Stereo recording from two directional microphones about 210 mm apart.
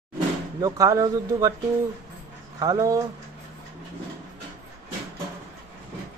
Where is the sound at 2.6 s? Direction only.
15° right (ahead or behind).